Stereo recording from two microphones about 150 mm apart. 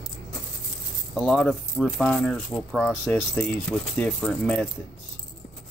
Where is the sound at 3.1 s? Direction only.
10° left (ahead or behind).